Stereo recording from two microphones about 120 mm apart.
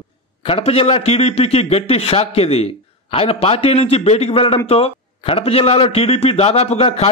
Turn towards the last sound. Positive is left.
turn(degrees=55)  # may be behind; listen again after turning